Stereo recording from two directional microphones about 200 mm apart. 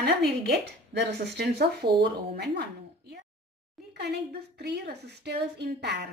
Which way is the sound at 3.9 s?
55° right (ahead or behind).